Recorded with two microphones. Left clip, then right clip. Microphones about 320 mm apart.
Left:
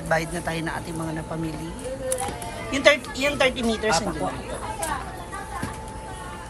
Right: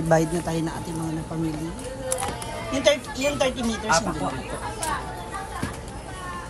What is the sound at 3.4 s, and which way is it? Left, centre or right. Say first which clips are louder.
Speech: left 3 dB; centre.